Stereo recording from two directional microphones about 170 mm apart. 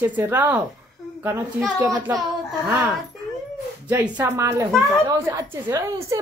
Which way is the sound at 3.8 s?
10° right (ahead or behind).